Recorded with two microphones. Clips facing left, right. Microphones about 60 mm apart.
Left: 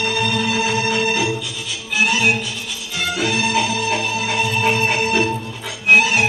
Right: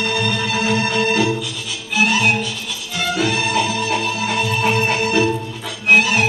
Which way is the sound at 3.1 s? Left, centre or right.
Centre.